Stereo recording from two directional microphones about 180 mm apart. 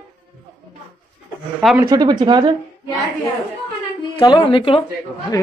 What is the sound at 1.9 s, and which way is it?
Speech, 25° right (ahead or behind).